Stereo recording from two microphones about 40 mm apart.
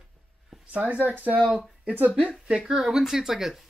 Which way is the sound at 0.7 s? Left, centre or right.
Right.